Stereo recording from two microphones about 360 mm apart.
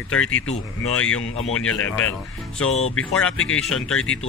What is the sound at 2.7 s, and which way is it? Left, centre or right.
Speech, centre.